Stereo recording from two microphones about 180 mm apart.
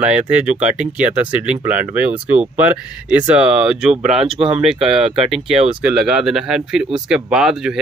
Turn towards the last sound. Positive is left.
turn(degrees=-5)  # may be behind; listen again after turning